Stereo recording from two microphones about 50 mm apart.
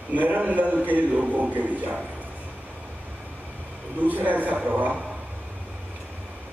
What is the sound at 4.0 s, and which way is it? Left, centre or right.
A man's voice, right.